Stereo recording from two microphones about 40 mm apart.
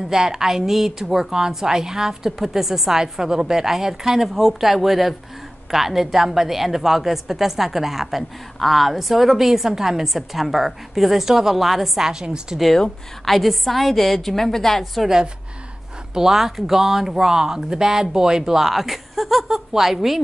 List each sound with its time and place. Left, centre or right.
0.1 s a woman's voice: centre
12.1 s a woman's voice: centre
13.2 s a woman's voice: centre
15.0 s a woman's voice: centre